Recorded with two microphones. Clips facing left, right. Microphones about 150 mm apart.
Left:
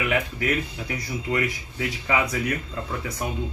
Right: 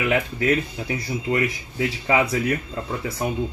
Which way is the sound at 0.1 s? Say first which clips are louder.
Right 4 dB; 30° right (ahead or behind).